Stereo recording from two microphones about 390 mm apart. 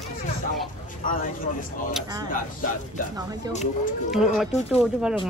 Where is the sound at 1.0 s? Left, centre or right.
Left.